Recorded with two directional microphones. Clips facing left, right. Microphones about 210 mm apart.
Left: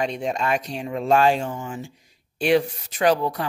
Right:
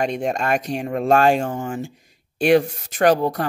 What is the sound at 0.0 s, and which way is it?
Speech, 50° right (ahead or behind).